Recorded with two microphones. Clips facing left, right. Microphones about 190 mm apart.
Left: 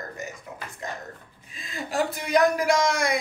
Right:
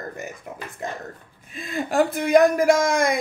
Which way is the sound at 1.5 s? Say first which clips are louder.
Right 6 dB; 55° right (ahead or behind).